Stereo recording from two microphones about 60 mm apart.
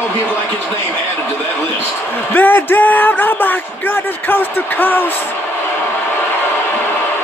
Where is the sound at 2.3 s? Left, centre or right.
Left.